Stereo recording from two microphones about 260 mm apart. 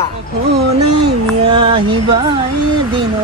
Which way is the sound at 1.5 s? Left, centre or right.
Centre.